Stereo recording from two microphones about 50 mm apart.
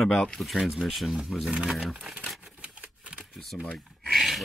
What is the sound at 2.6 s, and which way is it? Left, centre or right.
Typewriter, right.